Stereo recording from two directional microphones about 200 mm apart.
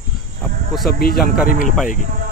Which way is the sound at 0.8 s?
50° left (ahead or behind).